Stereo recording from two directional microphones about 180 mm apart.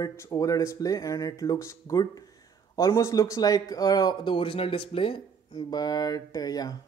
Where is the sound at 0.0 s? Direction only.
15° left (ahead or behind).